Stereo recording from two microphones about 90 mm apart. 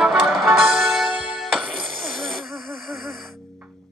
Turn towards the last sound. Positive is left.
turn(degrees=0)  # may be behind; listen again after turning